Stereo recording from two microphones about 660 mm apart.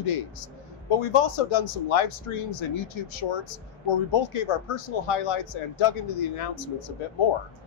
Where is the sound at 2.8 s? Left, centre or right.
Left.